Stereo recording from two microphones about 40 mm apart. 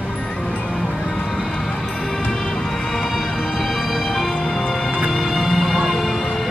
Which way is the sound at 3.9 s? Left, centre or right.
Centre.